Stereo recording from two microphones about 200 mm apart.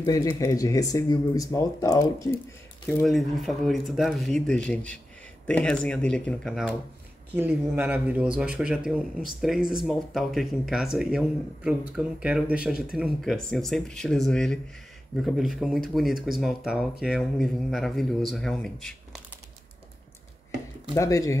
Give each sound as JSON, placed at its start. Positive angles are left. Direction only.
{"t": 0.0, "sound": "speech", "side_deg": 20}
{"t": 3.0, "sound": "speech", "side_deg": 0}
{"t": 20.9, "sound": "speech", "side_deg": 15}